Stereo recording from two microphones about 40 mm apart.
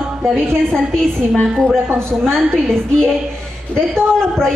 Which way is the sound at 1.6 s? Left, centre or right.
Right.